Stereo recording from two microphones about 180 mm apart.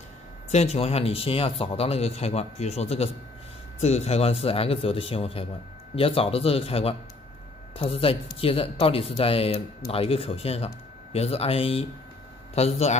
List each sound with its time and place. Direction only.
0.5 s a man's voice: 35° left (ahead or behind)